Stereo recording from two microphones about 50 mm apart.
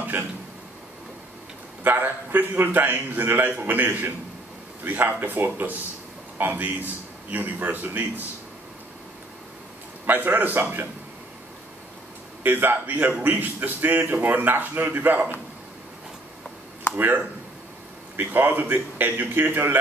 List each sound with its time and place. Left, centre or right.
1.8 s a man's voice: right
10.0 s a man's voice: right
12.4 s a man's voice: right
16.9 s a man's voice: right